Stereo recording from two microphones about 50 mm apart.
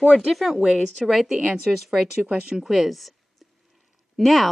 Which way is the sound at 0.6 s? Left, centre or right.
Centre.